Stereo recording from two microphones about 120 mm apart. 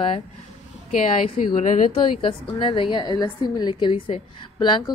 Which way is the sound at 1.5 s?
85° left.